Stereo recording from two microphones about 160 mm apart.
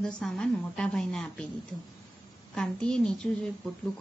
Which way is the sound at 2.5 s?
5° left (ahead or behind).